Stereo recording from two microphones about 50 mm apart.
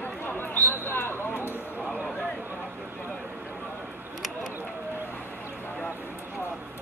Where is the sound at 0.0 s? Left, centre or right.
Left.